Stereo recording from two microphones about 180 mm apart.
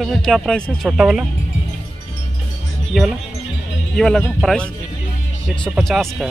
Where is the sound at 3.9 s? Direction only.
Centre (ahead or behind).